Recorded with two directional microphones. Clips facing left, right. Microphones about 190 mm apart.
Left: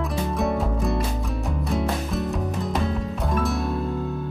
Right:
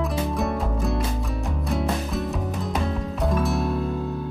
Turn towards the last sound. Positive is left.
turn(degrees=0)  # may be behind; listen again after turning